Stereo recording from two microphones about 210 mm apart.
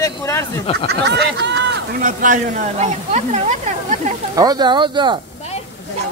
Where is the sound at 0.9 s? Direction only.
55° right (ahead or behind).